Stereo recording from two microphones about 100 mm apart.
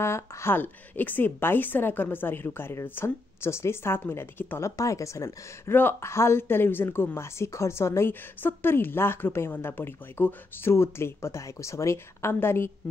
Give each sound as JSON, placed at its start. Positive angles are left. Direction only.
{"t": 0.0, "sound": "a woman's voice", "side_deg": 25}